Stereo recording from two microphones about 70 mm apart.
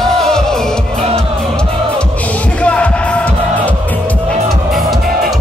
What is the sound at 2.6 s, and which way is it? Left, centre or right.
Music, centre.